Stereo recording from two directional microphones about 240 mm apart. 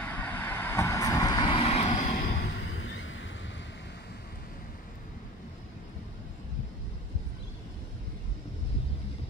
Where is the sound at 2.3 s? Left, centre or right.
Left.